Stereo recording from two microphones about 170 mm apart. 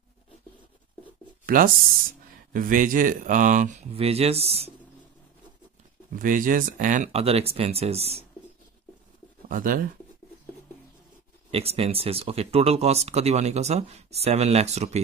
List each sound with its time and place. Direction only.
1.4 s a sound: 55° right (ahead or behind)
2.5 s speech: 50° right (ahead or behind); by 4.7 s 35° right (ahead or behind)
6.1 s speech: 55° right (ahead or behind); by 8.3 s 35° right (ahead or behind)
9.5 s speech: 55° right (ahead or behind)
11.5 s speech: 35° right (ahead or behind)